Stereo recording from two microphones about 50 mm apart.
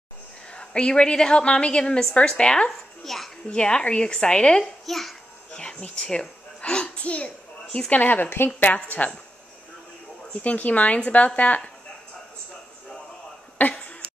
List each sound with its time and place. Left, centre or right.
0.5 s a woman's voice: left
4.8 s a child's voice: centre
5.5 s a sound: centre
7.9 s speech: left
8.7 s speech: left
10.3 s a woman's voice: left
13.6 s speech: left